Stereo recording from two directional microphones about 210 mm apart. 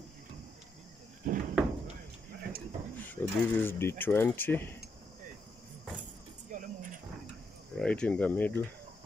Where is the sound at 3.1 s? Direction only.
10° left (ahead or behind).